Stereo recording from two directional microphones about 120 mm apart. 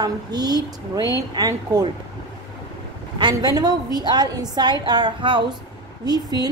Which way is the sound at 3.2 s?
35° right (ahead or behind).